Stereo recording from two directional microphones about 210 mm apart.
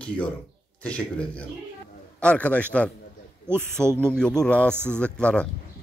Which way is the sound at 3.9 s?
5° left (ahead or behind).